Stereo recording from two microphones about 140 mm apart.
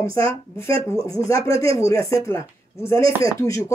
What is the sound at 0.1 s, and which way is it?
Speech, 20° left (ahead or behind).